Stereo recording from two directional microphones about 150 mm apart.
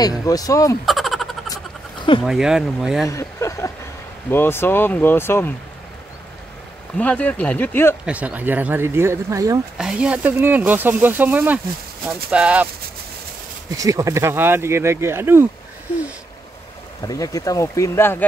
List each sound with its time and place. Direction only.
0.2 s speech: 25° left (ahead or behind)
0.8 s a sound: centre (ahead or behind)
2.2 s speech: 5° right (ahead or behind)
3.1 s a sound: 20° left (ahead or behind)
4.3 s speech: 15° left (ahead or behind)
7.0 s speech: 10° left (ahead or behind)
8.0 s speech: 10° right (ahead or behind)
9.8 s speech: 5° right (ahead or behind)
13.7 s speech: 20° right (ahead or behind)
17.0 s speech: 25° left (ahead or behind)